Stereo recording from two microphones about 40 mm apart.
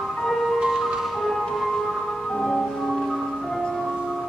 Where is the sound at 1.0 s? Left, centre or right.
Centre.